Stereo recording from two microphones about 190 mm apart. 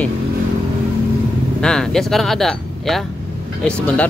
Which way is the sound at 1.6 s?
5° left (ahead or behind).